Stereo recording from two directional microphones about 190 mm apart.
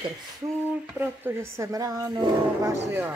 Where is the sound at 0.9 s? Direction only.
10° right (ahead or behind).